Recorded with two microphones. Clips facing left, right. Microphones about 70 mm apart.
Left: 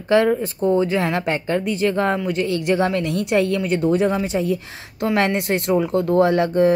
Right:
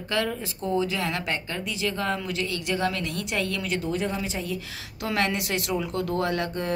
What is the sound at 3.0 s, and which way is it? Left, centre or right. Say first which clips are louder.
Speech: left 10 dB; left.